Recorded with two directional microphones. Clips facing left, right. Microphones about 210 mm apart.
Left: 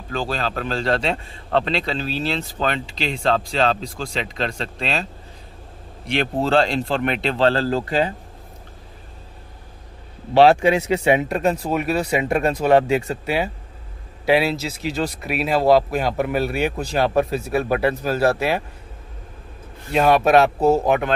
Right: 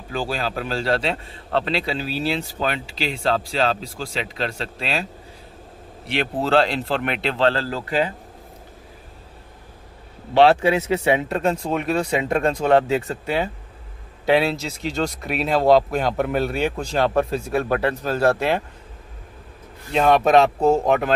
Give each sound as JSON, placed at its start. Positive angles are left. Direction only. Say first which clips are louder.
{"t": 0.1, "sound": "a man's voice", "louder": "left 1 dB", "side_deg": -10}
{"t": 6.1, "sound": "speech", "louder": "left 1 dB", "side_deg": -5}
{"t": 7.3, "sound": "speech", "louder": "left 3 dB", "side_deg": 40}
{"t": 10.5, "sound": "speech", "louder": "left 1 dB", "side_deg": 15}
{"t": 19.9, "sound": "speech", "louder": "left 1 dB", "side_deg": 5}